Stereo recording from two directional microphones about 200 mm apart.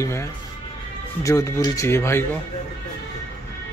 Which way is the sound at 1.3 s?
15° left (ahead or behind).